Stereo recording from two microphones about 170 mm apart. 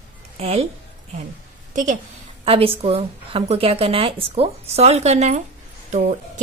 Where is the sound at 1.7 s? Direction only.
45° right (ahead or behind).